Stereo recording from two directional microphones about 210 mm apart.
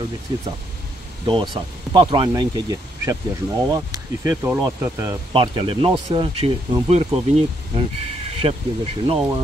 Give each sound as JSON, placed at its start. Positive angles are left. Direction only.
{"t": 1.2, "sound": "speech", "side_deg": -20}
{"t": 5.3, "sound": "speech", "side_deg": -25}